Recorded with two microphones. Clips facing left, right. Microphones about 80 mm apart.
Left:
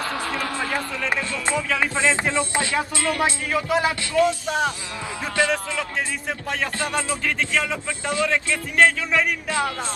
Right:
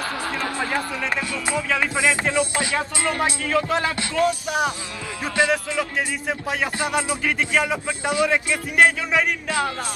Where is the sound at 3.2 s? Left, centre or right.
Centre.